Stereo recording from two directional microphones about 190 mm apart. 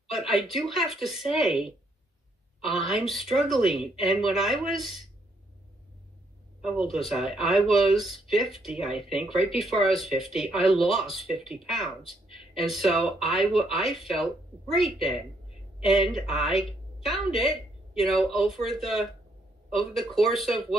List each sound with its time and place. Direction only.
0.1 s speech: centre (ahead or behind)
2.8 s speech: centre (ahead or behind)
6.6 s speech: centre (ahead or behind)